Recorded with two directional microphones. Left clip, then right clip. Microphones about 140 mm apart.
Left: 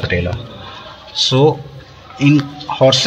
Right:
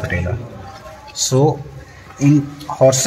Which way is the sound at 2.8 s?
15° left (ahead or behind).